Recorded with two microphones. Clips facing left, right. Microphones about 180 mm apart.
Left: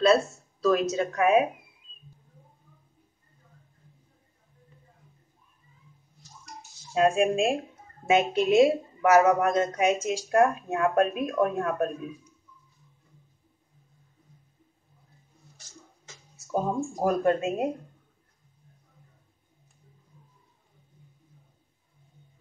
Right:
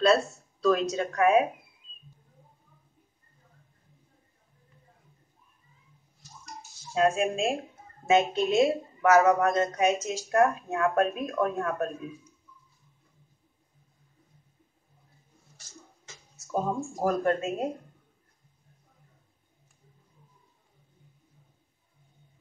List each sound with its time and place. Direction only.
0.0 s speech: 5° left (ahead or behind)
7.0 s a woman's voice: 15° left (ahead or behind)
16.9 s a woman's voice: 15° left (ahead or behind)